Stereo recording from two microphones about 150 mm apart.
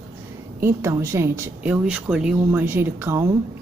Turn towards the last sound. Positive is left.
turn(degrees=-15)  # may be behind; listen again after turning